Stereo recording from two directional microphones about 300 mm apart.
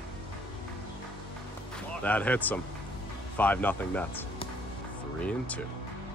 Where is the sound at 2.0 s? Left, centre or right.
Centre.